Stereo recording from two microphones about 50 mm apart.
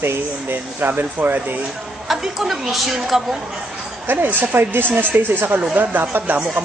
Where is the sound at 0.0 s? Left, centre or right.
Right.